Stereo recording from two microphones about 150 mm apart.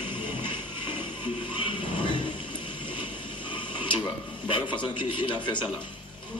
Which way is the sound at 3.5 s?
35° left (ahead or behind).